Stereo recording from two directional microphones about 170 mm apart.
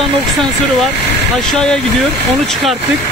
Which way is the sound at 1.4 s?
5° left (ahead or behind).